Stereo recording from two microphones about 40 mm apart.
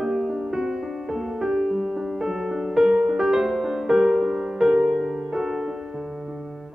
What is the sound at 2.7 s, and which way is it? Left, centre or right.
Music, centre.